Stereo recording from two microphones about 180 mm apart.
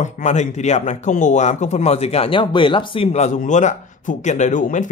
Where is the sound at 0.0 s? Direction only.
40° left (ahead or behind).